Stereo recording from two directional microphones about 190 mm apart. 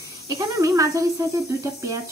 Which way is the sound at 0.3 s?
20° right (ahead or behind).